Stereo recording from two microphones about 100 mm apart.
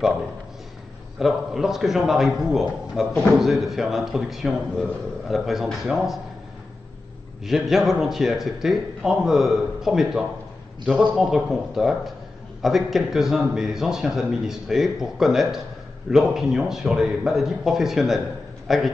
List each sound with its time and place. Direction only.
1.2 s a man's voice: 5° right (ahead or behind)
7.4 s a man's voice: centre (ahead or behind)